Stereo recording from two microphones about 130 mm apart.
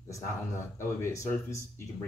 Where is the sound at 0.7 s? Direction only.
20° left (ahead or behind).